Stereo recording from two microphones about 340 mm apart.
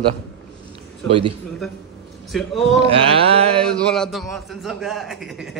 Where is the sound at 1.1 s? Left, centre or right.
Centre.